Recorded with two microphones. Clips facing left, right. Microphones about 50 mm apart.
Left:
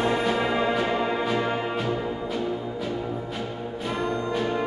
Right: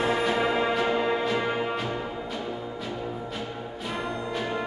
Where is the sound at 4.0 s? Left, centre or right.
Centre.